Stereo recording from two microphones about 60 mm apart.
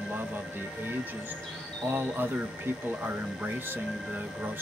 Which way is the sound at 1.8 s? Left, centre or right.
Right.